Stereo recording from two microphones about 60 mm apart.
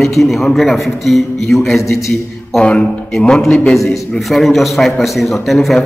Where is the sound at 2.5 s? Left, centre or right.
Centre.